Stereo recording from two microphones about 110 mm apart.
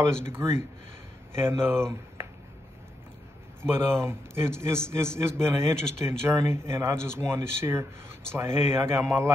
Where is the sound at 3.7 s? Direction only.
20° right (ahead or behind).